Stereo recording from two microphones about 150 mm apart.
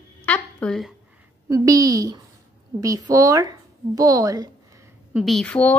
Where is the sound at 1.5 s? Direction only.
20° right (ahead or behind).